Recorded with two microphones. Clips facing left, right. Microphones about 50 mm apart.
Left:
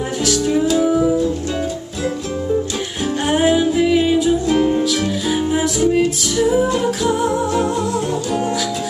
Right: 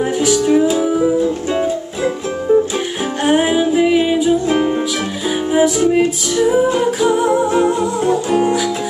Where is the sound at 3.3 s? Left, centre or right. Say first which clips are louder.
Right 2 dB; centre.